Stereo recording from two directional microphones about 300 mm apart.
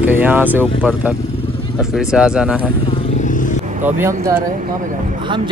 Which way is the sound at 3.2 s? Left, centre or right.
Left.